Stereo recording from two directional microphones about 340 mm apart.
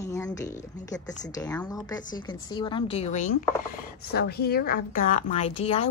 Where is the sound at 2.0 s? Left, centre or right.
Left.